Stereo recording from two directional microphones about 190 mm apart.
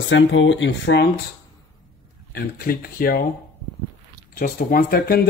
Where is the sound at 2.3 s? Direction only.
50° left (ahead or behind).